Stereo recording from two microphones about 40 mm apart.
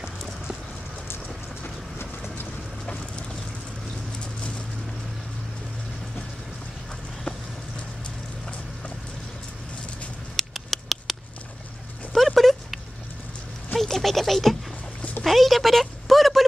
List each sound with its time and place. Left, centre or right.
4.2 s bird: left
10.3 s patter: centre
12.1 s a sound: centre